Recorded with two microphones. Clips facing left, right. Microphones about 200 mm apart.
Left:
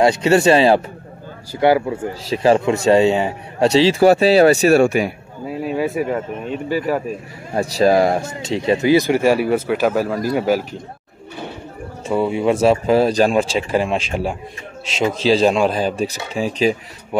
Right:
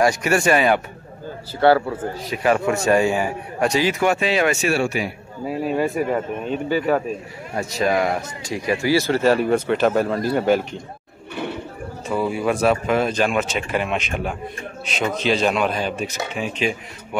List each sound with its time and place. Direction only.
0.0 s a man's voice: 25° left (ahead or behind)
1.6 s speech: 15° left (ahead or behind)
2.3 s a man's voice: 30° left (ahead or behind); by 5.1 s 50° left (ahead or behind)
5.5 s speech: centre (ahead or behind)
7.5 s speech: 35° left (ahead or behind); by 10.8 s 5° left (ahead or behind)
12.1 s speech: 25° left (ahead or behind)